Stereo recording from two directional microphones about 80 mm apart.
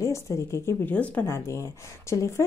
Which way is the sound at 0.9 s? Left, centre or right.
Centre.